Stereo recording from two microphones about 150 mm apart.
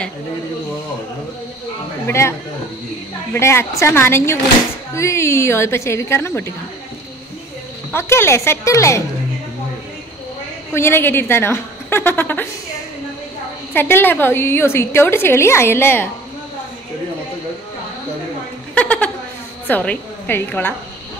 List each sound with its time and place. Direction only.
2.0 s speech: 15° left (ahead or behind)
3.3 s a woman's voice: 20° left (ahead or behind)
7.9 s a woman's voice: 15° left (ahead or behind)
10.7 s a woman's voice: 15° left (ahead or behind)
13.7 s a woman's voice: 15° left (ahead or behind)
18.8 s a sound: 10° left (ahead or behind)
19.7 s a woman's voice: 10° left (ahead or behind)